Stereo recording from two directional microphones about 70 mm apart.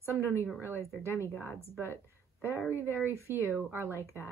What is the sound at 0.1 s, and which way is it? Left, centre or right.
Speech, right.